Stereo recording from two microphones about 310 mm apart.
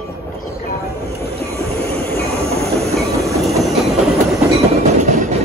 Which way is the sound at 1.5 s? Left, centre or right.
Centre.